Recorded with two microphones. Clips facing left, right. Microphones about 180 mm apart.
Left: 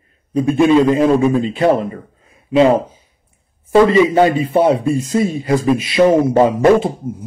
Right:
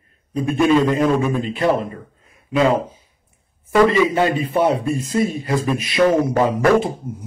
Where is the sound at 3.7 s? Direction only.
30° left (ahead or behind).